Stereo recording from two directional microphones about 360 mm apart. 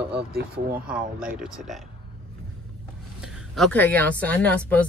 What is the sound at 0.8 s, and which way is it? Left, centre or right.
Speech, centre.